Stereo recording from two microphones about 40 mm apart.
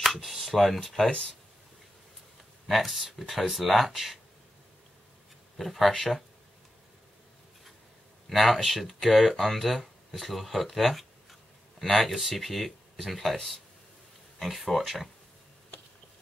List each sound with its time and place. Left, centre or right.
0.0 s shuffling cards: centre
0.5 s speech: centre
2.7 s speech: centre
5.6 s speech: centre
8.3 s speech: centre
14.4 s speech: centre